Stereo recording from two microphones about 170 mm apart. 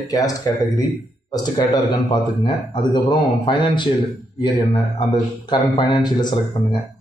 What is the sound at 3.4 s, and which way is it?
Speech, 25° left (ahead or behind).